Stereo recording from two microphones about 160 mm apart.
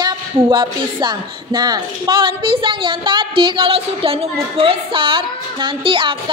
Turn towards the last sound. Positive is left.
turn(degrees=-35)  # may be behind; listen again after turning